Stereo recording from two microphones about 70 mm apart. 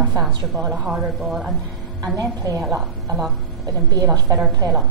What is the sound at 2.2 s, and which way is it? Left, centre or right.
A woman's voice, right.